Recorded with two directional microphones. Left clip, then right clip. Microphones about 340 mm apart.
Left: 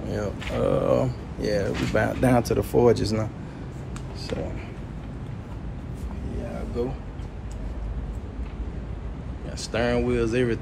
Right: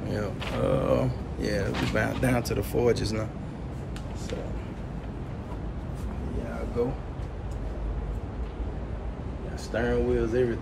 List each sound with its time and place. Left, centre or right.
0.1 s speech: centre
9.7 s speech: centre